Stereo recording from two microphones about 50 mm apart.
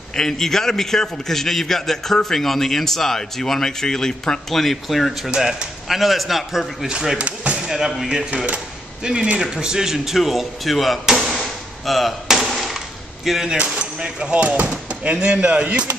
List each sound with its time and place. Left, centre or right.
0.1 s a man's voice: centre
6.9 s a man's voice: centre
7.2 s basketball bounce: right
7.6 s a man's voice: centre
11.1 s arrow: centre
12.4 s a sound: centre
13.6 s speech: right